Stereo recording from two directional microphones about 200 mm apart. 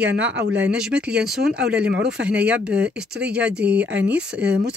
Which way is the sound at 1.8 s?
55° right (ahead or behind).